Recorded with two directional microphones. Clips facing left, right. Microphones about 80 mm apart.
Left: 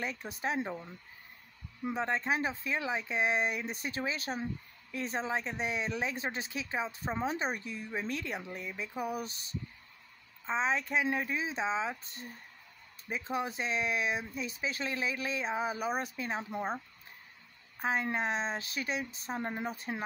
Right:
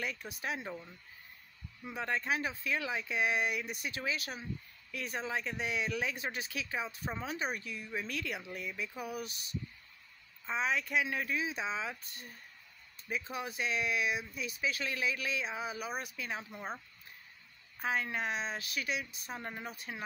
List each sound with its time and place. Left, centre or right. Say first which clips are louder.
0.0 s speech: left 3 dB; left
2.0 s speech: left 2 dB; left
17.7 s speech: left 3 dB; left